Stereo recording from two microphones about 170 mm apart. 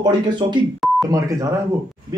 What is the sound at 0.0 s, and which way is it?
Speech, 25° right (ahead or behind).